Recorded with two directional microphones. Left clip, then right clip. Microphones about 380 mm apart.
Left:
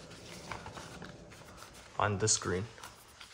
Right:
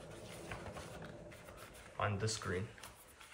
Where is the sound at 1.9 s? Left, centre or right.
Centre.